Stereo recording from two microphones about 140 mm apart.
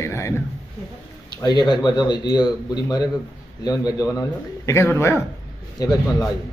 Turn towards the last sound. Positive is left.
turn(degrees=25)  # may be behind; listen again after turning